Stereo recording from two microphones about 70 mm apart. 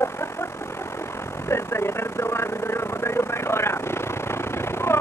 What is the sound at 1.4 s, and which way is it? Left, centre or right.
Vehicle, left.